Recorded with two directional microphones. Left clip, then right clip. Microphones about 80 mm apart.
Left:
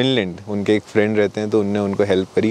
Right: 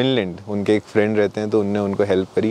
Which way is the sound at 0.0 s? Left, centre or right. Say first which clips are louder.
Left 1 dB; left.